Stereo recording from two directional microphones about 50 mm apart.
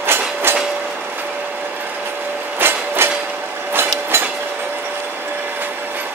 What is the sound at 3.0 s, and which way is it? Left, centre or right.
Vehicle, right.